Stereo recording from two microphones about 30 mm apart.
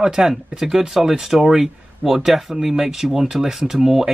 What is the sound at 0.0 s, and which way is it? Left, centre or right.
Speech, right.